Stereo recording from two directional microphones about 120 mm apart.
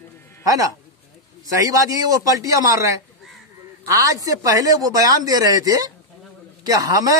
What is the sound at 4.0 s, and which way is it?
Speech, 30° right (ahead or behind).